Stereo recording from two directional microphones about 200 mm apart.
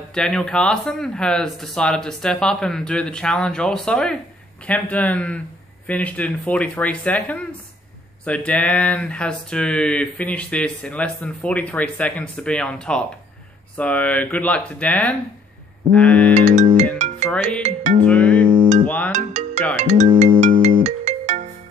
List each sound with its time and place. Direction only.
0.1 s speech: 5° left (ahead or behind)
16.3 s music: 35° right (ahead or behind)
17.3 s speech: 5° left (ahead or behind)
19.1 s ringtone: 35° right (ahead or behind)
19.7 s speech: 35° right (ahead or behind)
20.3 s ringtone: 35° right (ahead or behind)